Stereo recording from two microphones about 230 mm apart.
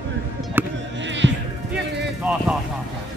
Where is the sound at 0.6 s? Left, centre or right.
Centre.